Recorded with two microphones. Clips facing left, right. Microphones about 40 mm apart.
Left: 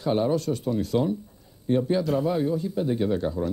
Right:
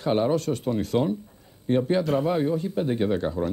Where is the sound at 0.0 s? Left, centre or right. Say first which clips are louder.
Right 1 dB; right.